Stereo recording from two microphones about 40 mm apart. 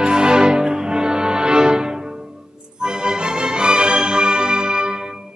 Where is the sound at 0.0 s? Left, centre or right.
Right.